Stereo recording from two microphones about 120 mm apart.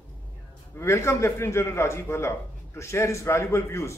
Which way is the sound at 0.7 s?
25° left (ahead or behind).